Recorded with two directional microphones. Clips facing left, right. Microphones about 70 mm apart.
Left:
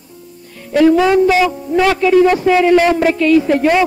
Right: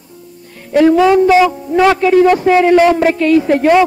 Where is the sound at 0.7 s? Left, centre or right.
Right.